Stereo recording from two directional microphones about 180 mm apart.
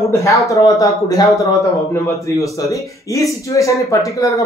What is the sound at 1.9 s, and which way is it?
A man's voice, 15° left (ahead or behind).